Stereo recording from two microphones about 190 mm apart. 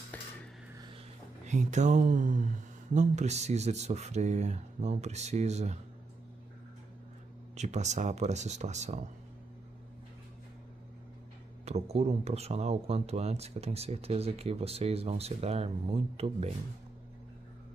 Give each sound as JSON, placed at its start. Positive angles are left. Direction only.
{"t": 0.1, "sound": "dishes", "side_deg": 10}
{"t": 1.4, "sound": "speech", "side_deg": -40}
{"t": 7.5, "sound": "speech", "side_deg": -35}
{"t": 11.6, "sound": "speech", "side_deg": -35}